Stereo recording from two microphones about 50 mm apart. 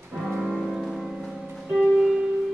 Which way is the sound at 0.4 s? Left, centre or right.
Centre.